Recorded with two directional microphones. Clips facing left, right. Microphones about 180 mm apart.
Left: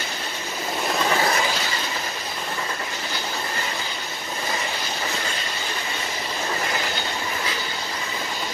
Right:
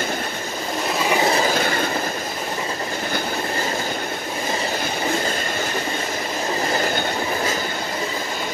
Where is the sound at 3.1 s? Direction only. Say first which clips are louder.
Right 6 dB; 50° right (ahead or behind).